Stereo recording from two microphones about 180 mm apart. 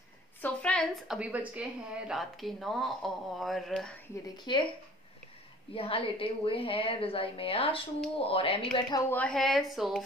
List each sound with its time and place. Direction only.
0.4 s a woman's voice: 5° left (ahead or behind)
4.5 s speech: 25° left (ahead or behind)
5.8 s a woman's voice: 30° left (ahead or behind)
9.1 s a woman's voice: 5° left (ahead or behind)